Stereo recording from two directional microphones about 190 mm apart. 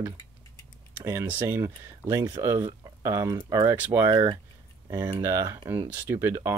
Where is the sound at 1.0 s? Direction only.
10° right (ahead or behind).